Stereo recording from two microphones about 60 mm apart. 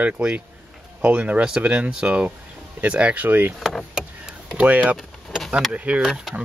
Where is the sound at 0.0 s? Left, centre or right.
Centre; by 3.5 s right.